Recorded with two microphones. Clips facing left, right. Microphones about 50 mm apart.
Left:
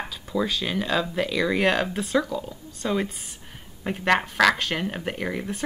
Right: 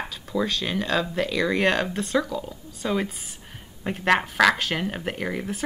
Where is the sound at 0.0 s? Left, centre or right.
Centre.